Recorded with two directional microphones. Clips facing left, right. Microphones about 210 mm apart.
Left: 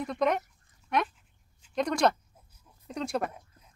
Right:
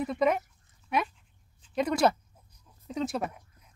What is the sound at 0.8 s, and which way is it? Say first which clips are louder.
Dog: left 1 dB; 5° right (ahead or behind).